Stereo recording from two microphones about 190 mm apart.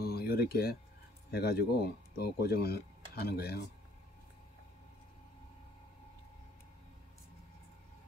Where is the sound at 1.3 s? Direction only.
60° left (ahead or behind).